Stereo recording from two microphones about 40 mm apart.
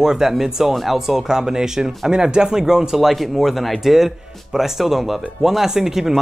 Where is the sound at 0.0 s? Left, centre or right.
Centre.